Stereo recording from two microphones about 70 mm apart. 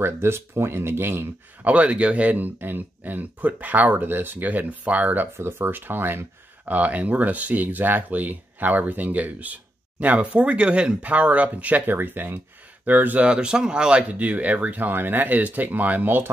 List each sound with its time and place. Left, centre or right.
0.0 s speech: right
1.6 s speech: centre
13.3 s speech: centre